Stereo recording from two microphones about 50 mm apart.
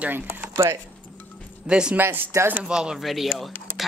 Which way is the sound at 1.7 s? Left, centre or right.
Centre.